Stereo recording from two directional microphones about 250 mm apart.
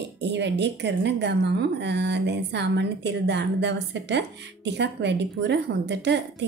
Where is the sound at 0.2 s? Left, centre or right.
Right.